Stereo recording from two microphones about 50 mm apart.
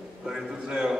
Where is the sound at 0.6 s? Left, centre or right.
Centre.